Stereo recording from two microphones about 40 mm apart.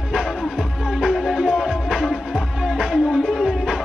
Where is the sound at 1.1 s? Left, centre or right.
Centre.